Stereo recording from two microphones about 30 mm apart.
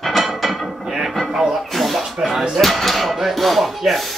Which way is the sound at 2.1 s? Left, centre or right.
Centre.